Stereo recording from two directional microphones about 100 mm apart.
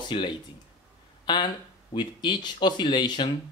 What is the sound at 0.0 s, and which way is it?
Speech, 50° left (ahead or behind).